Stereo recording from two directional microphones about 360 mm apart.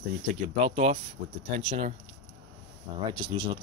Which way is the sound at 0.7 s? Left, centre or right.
Centre.